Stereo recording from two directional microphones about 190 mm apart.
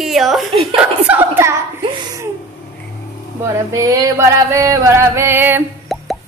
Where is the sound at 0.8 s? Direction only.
10° right (ahead or behind).